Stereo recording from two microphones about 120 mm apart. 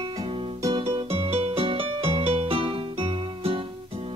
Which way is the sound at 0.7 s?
50° right (ahead or behind).